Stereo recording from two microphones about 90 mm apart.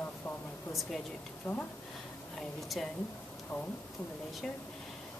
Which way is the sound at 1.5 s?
25° left (ahead or behind).